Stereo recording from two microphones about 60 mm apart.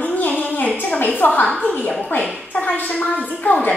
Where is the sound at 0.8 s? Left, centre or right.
Left.